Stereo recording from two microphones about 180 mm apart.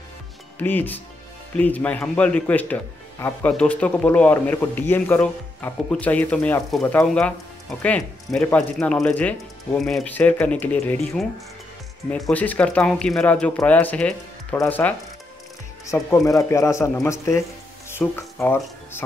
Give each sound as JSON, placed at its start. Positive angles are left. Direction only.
{"t": 0.6, "sound": "speech", "side_deg": 10}